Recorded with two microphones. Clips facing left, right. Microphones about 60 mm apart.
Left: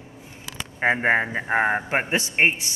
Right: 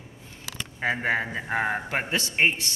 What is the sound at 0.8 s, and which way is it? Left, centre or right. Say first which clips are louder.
Speech: left 5 dB; left.